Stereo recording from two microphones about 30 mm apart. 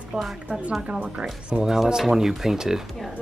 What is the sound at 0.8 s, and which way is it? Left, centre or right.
Speech, right.